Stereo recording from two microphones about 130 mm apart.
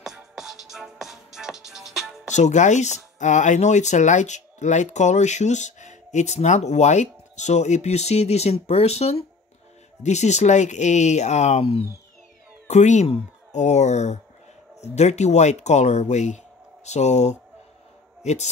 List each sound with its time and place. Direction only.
0.0 s music: centre (ahead or behind)
2.3 s a man's voice: 65° left (ahead or behind)